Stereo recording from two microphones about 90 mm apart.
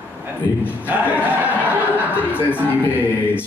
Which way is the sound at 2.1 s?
20° left (ahead or behind).